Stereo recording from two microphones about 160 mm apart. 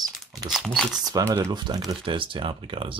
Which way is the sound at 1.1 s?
25° right (ahead or behind).